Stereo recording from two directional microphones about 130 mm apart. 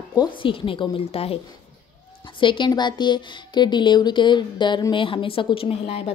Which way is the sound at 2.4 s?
40° left (ahead or behind).